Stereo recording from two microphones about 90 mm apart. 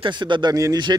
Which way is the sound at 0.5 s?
45° right (ahead or behind).